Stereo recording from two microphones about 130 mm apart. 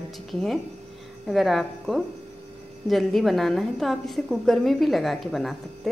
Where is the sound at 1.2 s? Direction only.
Centre (ahead or behind).